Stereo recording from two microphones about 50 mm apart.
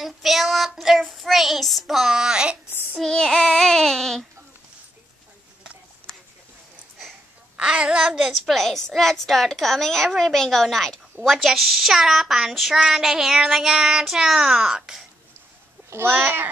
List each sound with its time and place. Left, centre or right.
0.0 s child singing: centre
3.0 s child singing: centre
7.5 s child singing: centre
16.0 s speech: right